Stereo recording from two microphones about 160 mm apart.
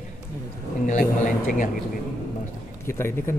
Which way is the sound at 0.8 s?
55° left (ahead or behind).